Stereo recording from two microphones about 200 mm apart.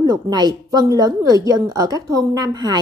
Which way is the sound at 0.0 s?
20° right (ahead or behind).